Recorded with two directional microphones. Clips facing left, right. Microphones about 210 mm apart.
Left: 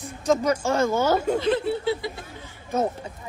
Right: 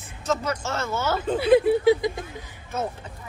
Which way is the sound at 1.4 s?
10° right (ahead or behind).